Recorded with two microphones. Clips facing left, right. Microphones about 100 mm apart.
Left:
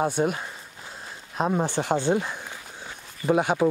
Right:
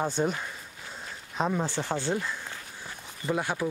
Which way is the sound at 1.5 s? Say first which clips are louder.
Left 5 dB; 20° left (ahead or behind).